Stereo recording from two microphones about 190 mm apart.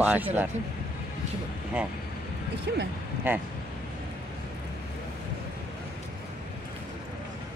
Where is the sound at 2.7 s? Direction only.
65° right (ahead or behind).